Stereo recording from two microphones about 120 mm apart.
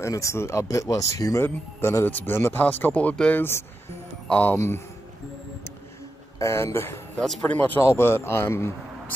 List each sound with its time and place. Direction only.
0.0 s speech: 25° left (ahead or behind)
6.4 s speech: 20° left (ahead or behind)
7.2 s speech: 10° left (ahead or behind)